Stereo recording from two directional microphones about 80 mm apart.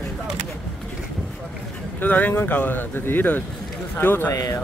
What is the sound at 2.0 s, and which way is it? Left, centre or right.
Speech, left.